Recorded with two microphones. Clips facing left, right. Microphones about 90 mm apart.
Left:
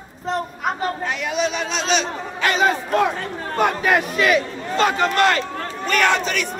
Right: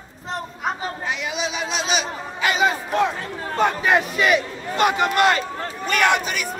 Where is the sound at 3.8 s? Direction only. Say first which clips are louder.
Left 1 dB; 20° right (ahead or behind).